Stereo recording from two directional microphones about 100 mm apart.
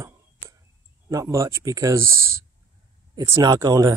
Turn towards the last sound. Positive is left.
turn(degrees=-35)  # may be behind; listen again after turning